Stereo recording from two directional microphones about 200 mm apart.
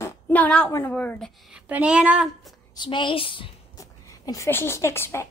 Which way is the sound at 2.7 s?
25° left (ahead or behind).